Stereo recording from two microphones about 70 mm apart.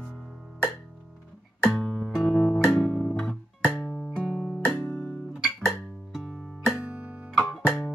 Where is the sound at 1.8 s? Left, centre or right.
Centre.